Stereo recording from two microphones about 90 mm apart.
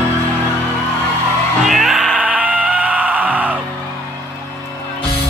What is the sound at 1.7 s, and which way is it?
Music, centre (ahead or behind).